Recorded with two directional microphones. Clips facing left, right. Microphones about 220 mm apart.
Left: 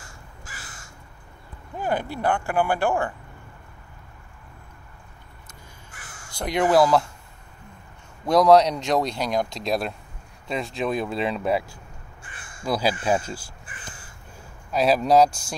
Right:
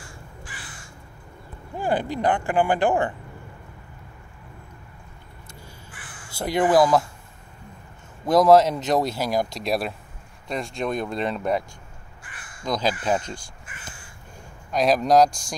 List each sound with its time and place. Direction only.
0.5 s crow: 45° left (ahead or behind)
1.8 s speech: 15° right (ahead or behind)
5.9 s crow: 45° left (ahead or behind)
6.3 s speech: 5° right (ahead or behind)
8.3 s speech: centre (ahead or behind)
12.2 s crow: 25° left (ahead or behind)
12.6 s speech: 10° left (ahead or behind)
14.7 s speech: 5° left (ahead or behind)